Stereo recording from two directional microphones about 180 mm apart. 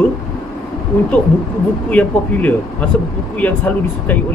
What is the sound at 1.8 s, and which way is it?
Speech, 10° left (ahead or behind).